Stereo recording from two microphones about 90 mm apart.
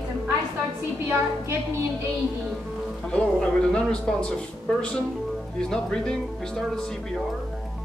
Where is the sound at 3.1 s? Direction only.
10° left (ahead or behind).